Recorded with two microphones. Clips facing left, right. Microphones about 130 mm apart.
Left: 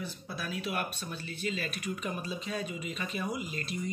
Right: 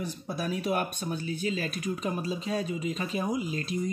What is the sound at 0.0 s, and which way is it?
Speech, 50° right (ahead or behind).